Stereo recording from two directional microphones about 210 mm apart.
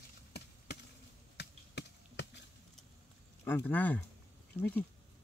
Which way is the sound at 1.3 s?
55° left (ahead or behind).